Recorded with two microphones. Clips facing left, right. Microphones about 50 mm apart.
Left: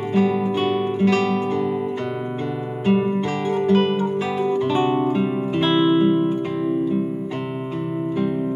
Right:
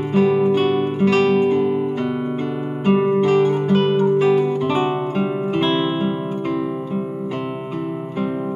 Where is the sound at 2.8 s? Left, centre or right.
Centre.